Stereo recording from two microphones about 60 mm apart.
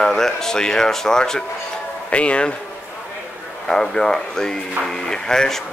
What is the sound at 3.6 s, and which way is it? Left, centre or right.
Speech, centre.